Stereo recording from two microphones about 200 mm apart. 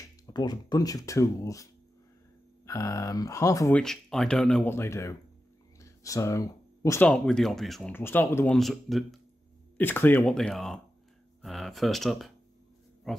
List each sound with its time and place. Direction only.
0.0 s speech: 20° left (ahead or behind)
3.8 s speech: centre (ahead or behind)